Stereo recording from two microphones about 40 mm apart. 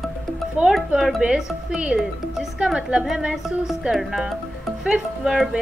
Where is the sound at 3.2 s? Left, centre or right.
Right.